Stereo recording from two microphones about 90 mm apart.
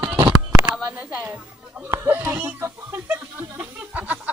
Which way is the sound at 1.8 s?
25° right (ahead or behind).